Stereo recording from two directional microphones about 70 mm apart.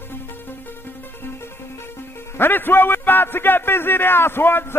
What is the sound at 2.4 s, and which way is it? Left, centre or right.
A man's voice, left.